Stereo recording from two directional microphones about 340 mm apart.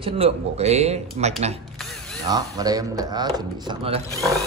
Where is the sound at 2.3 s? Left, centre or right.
Centre.